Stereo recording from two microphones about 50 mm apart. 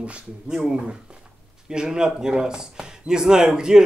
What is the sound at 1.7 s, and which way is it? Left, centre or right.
A man's voice, centre.